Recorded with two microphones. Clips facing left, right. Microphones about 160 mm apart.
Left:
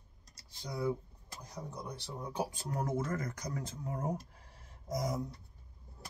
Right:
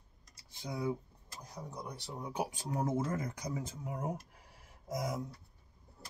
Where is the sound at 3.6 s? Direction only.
10° right (ahead or behind).